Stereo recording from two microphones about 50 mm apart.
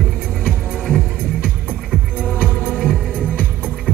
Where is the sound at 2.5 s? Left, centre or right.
Left.